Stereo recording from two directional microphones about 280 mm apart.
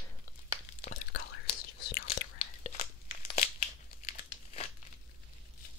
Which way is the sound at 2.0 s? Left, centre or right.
Left.